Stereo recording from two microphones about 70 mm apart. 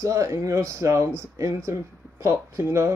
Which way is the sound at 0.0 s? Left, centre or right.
Right.